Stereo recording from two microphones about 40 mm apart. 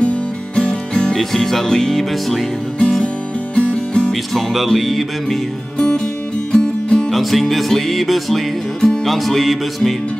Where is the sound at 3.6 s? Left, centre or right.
Left.